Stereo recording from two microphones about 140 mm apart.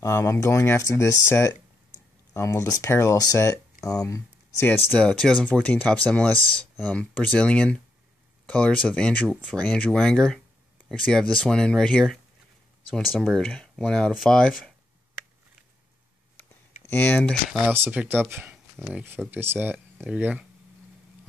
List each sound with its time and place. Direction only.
0.0 s speech: 20° left (ahead or behind); by 14.7 s 5° left (ahead or behind)
16.9 s speech: 15° left (ahead or behind)
17.7 s speech: 15° right (ahead or behind)